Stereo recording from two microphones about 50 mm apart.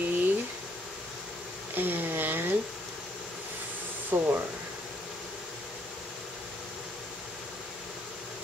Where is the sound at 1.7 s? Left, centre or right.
Right.